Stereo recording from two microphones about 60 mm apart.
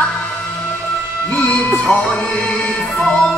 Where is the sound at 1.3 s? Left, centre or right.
Left.